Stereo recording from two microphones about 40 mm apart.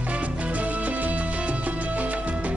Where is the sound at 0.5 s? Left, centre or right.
Right.